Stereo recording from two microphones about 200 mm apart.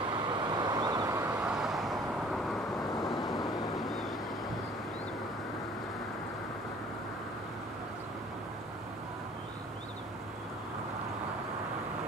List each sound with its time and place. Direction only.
0.1 s vehicle: 20° right (ahead or behind)
1.4 s vehicle: 5° right (ahead or behind)
3.0 s vehicle: 20° left (ahead or behind)